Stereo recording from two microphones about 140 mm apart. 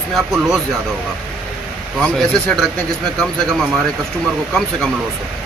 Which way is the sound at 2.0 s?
5° left (ahead or behind).